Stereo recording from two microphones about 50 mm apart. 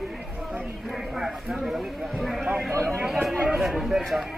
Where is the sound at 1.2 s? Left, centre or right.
Centre.